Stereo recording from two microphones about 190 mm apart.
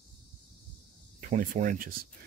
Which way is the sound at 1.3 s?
45° right (ahead or behind).